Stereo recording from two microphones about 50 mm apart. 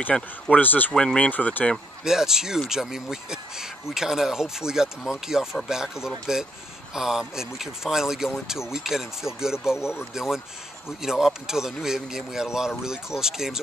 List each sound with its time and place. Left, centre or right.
0.1 s speech: centre
0.5 s speech: left
0.9 s speech: centre
1.3 s speech: left
2.0 s speech: centre